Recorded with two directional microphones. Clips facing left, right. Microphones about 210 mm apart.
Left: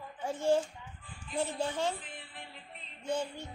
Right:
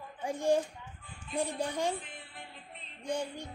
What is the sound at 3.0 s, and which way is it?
Speech, 15° right (ahead or behind).